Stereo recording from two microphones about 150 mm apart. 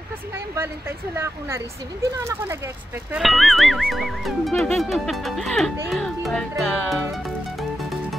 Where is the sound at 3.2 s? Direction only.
Centre (ahead or behind).